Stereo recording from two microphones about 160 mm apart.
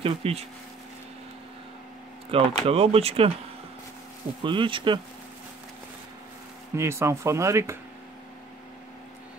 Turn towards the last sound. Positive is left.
turn(degrees=-15)  # may be behind; listen again after turning